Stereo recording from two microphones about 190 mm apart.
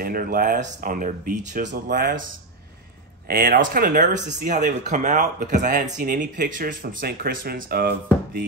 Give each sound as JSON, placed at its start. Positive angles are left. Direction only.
{"t": 0.0, "sound": "speech", "side_deg": -50}
{"t": 3.3, "sound": "speech", "side_deg": -50}